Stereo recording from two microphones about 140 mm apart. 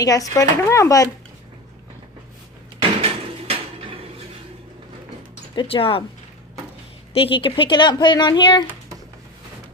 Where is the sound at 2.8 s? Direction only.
45° right (ahead or behind).